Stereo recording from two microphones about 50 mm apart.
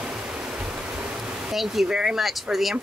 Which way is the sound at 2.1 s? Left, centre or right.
Centre.